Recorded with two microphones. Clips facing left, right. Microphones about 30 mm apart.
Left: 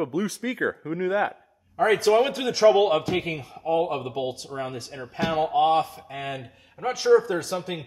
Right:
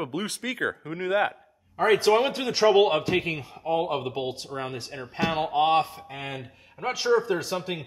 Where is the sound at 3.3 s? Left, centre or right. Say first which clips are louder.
Left 1 dB; centre; by 5.9 s right.